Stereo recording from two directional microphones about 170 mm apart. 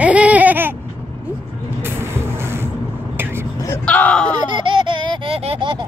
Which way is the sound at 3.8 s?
10° left (ahead or behind).